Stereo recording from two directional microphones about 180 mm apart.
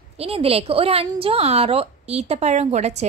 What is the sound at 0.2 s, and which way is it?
A woman's voice, 30° right (ahead or behind).